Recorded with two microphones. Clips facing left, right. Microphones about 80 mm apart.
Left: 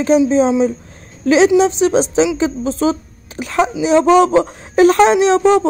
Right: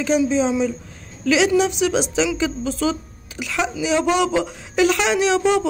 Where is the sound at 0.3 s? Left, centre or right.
Left.